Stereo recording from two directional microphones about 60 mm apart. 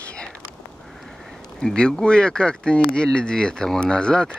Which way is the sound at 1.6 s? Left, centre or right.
Centre.